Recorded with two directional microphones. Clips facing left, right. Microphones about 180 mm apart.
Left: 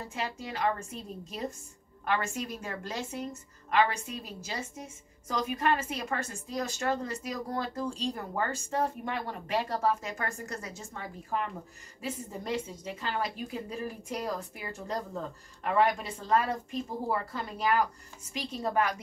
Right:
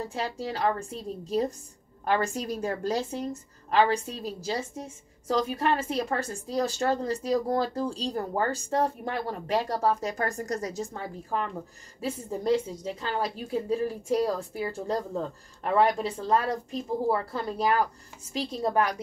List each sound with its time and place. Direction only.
0.1 s a woman's voice: 35° right (ahead or behind)